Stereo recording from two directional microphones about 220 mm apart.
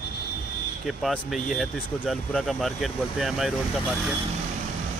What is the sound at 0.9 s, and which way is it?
Speech, centre (ahead or behind).